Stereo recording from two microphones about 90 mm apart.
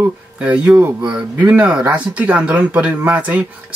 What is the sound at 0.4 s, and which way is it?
Speech, 15° right (ahead or behind).